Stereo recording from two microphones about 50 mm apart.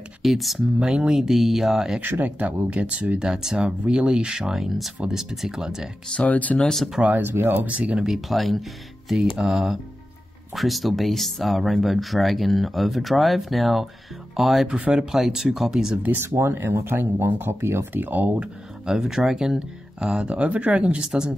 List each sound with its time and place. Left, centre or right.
0.2 s speech: centre
0.7 s speech: centre
2.0 s speech: right
3.3 s speech: centre
6.1 s speech: left
7.2 s speech: right
8.0 s speech: centre
16.3 s speech: right
17.6 s speech: right
17.9 s speech: right
18.9 s speech: centre